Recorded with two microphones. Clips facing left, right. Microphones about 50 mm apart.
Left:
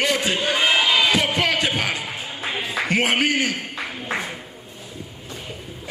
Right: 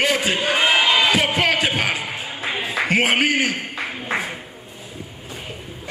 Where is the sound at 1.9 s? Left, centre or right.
Centre.